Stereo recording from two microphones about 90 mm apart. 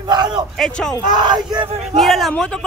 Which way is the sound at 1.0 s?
55° right (ahead or behind).